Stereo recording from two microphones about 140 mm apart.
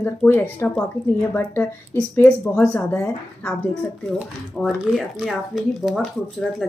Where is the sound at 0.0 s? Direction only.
15° left (ahead or behind).